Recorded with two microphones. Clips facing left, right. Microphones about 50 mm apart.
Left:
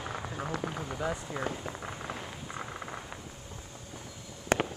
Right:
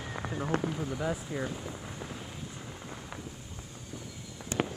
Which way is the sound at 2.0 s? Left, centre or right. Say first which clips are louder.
Left 3 dB; left.